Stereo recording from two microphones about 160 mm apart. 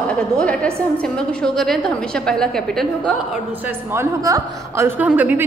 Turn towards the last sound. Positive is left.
turn(degrees=-10)  # may be behind; listen again after turning